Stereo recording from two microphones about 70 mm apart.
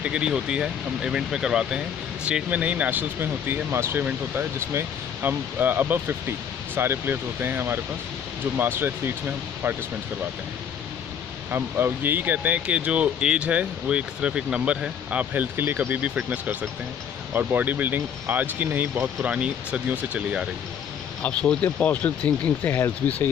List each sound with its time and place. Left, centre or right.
0.0 s speech: centre; by 9.1 s right
11.5 s speech: right
15.5 s speech: right
17.3 s speech: right
21.2 s speech: centre